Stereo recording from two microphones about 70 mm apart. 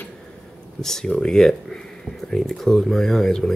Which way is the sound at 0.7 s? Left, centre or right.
Centre.